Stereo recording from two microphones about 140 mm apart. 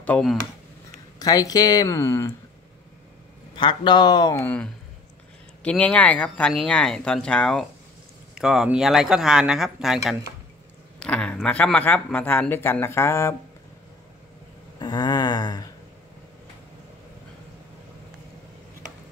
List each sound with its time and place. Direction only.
0.0 s speech: 10° left (ahead or behind)
1.2 s speech: 25° left (ahead or behind)
3.5 s speech: 35° left (ahead or behind)
5.6 s speech: 5° left (ahead or behind)
14.8 s a sound: 30° left (ahead or behind)